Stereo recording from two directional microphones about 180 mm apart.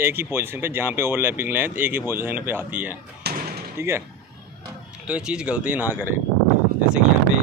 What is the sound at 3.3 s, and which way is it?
Slam, 65° right (ahead or behind).